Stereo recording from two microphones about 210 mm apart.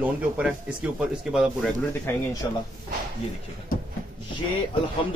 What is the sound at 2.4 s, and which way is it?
Speech, 15° left (ahead or behind).